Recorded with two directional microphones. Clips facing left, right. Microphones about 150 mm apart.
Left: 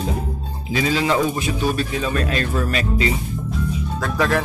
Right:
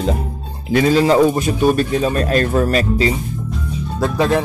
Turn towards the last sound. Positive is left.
turn(degrees=-25)  # may be behind; listen again after turning